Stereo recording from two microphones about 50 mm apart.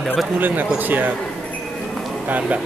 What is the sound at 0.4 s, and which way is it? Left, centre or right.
Speech, right.